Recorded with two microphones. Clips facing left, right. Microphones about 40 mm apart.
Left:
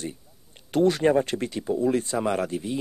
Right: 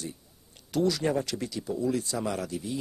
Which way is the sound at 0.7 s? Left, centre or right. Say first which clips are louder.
Left 6 dB; left.